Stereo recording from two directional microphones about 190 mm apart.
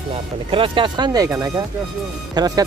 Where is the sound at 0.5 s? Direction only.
25° right (ahead or behind).